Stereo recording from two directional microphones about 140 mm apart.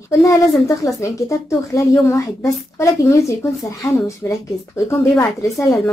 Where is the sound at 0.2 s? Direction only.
25° left (ahead or behind).